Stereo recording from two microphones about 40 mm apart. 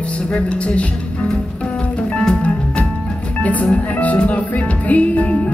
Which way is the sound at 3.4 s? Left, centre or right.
Left.